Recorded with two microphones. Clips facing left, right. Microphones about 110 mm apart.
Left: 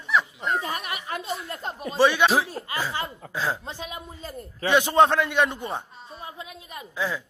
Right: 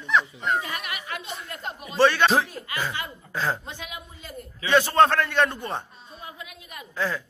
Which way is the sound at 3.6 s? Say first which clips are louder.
Left 3 dB; 35° left (ahead or behind).